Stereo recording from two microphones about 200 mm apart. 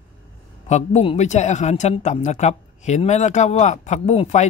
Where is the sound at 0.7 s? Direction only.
35° left (ahead or behind).